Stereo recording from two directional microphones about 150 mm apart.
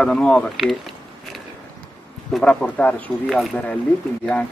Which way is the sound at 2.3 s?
5° left (ahead or behind).